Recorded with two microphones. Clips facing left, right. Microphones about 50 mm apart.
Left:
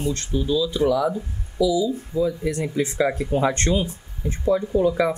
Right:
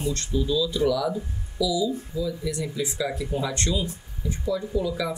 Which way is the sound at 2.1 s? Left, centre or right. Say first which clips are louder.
Left 9 dB; left.